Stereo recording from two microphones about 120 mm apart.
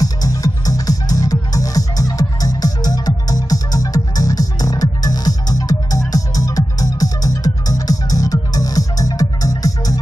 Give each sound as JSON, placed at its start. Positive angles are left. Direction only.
{"t": 0.0, "sound": "music", "side_deg": 30}